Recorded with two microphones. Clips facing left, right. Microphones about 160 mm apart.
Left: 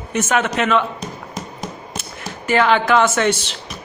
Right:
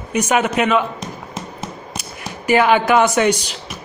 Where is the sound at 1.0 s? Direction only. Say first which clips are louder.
Even; 40° left (ahead or behind).